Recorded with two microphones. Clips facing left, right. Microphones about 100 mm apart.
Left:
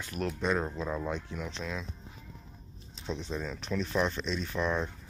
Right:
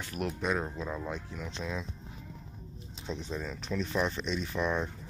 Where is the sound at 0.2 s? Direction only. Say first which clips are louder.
Left 2 dB; 10° right (ahead or behind).